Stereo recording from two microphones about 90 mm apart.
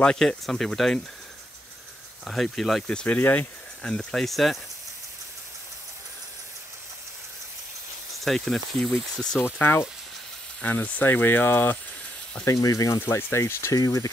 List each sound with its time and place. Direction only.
0.0 s speech: 10° left (ahead or behind)
2.2 s speech: 5° left (ahead or behind)
3.2 s speech: 20° left (ahead or behind)
3.8 s speech: 10° left (ahead or behind)
8.2 s speech: centre (ahead or behind)
9.4 s speech: 25° left (ahead or behind)
12.5 s speech: 40° left (ahead or behind)